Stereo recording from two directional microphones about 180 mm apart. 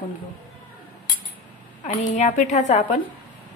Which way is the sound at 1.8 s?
45° left (ahead or behind).